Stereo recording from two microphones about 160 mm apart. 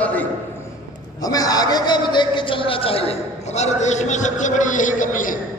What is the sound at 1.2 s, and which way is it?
A man's voice, 25° left (ahead or behind).